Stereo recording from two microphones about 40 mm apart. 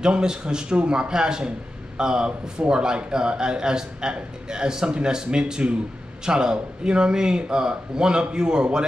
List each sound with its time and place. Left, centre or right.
0.0 s a man's voice: centre